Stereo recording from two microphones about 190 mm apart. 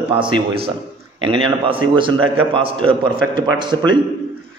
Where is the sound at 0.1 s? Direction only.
25° right (ahead or behind).